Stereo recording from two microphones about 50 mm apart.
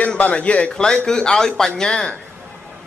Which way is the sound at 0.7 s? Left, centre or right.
Centre.